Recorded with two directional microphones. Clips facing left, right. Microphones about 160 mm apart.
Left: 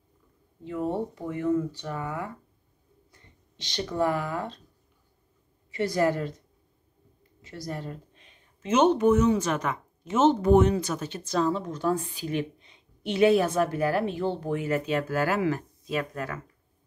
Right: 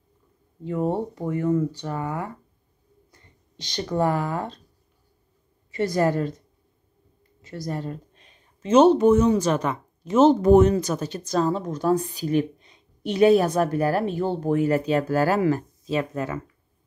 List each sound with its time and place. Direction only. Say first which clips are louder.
1.3 s speech: right 3 dB; 40° right (ahead or behind)
3.1 s a sound: right 1 dB; 40° right (ahead or behind)
5.7 s speech: right 3 dB; 45° right (ahead or behind)
7.4 s speech: right 5 dB; 40° right (ahead or behind); by 16.3 s 25° right (ahead or behind)